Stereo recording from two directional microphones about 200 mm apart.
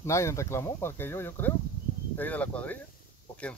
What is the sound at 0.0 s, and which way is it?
A man's voice, 15° left (ahead or behind).